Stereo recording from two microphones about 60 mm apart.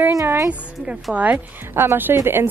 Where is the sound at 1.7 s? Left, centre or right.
Right.